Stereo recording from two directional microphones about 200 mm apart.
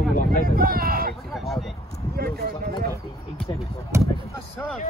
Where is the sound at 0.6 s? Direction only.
45° right (ahead or behind).